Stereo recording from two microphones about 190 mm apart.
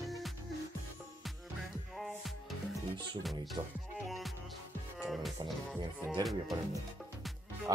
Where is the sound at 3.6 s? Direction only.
25° right (ahead or behind).